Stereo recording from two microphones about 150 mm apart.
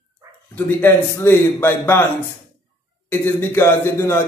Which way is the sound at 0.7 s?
15° left (ahead or behind).